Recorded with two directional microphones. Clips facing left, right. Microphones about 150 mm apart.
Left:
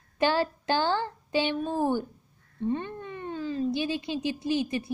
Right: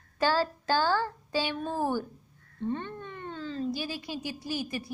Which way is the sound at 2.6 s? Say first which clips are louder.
Left 3 dB; 10° left (ahead or behind).